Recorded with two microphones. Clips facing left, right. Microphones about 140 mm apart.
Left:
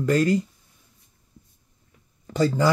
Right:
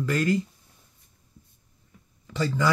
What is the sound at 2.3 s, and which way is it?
Speech, 40° left (ahead or behind).